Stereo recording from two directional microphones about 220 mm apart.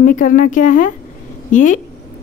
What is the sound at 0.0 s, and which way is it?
A woman's voice, 35° left (ahead or behind).